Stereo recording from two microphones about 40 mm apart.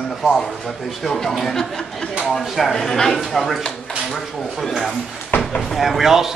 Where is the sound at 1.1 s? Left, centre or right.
Centre.